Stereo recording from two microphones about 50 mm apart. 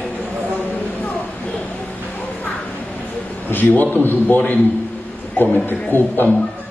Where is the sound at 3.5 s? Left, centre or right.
Left.